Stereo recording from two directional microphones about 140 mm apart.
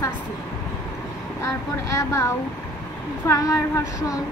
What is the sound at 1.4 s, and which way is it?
Speech, 20° left (ahead or behind).